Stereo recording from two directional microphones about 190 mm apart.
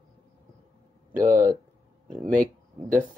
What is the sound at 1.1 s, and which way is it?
Speech, 45° right (ahead or behind).